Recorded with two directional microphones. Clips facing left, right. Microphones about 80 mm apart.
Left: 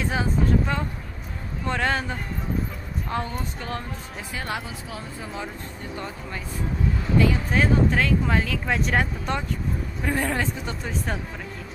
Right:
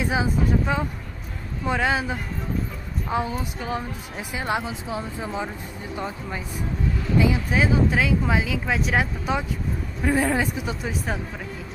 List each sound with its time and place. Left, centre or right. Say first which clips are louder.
0.0 s speech: right 1 dB; centre
4.3 s speech: right 5 dB; centre